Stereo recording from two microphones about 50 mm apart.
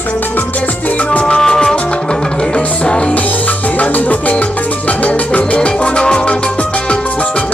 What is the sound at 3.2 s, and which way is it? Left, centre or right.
Music, left.